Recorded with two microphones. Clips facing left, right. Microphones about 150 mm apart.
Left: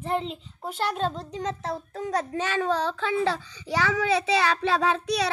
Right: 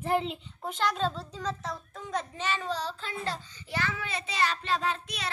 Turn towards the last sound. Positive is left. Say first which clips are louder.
# left 9 dB
turn(degrees=80)